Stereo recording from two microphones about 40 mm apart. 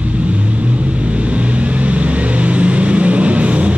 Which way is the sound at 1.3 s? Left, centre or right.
Right.